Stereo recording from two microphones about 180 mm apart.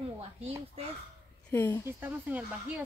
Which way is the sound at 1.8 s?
10° right (ahead or behind).